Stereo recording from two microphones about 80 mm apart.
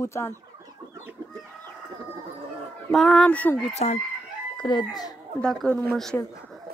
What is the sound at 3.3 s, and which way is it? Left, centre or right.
Speech, centre.